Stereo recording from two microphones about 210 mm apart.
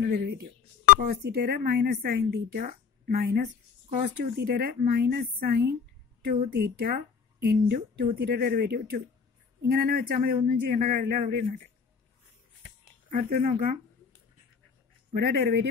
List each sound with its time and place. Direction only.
0.0 s speech: 50° right (ahead or behind)
13.1 s speech: 40° right (ahead or behind)
15.1 s speech: 50° right (ahead or behind)